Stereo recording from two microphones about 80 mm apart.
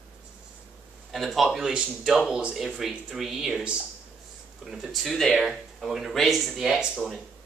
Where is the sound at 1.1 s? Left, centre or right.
Centre.